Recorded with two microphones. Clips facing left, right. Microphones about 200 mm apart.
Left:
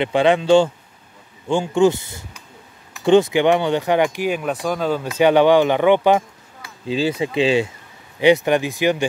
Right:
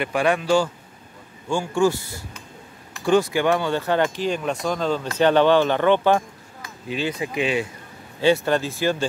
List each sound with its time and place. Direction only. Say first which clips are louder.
0.0 s speech: left 5 dB; 20° left (ahead or behind)
6.9 s speech: left 6 dB; 25° left (ahead or behind)
8.2 s speech: left 4 dB; 15° left (ahead or behind)